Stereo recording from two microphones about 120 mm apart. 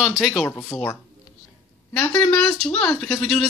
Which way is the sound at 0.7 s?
25° left (ahead or behind).